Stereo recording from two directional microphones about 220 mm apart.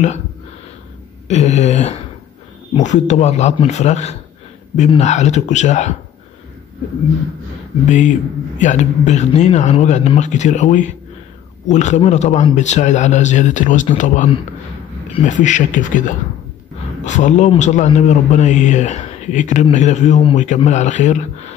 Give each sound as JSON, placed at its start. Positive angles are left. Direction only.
{"t": 1.2, "sound": "speech", "side_deg": 30}
{"t": 8.5, "sound": "speech", "side_deg": 35}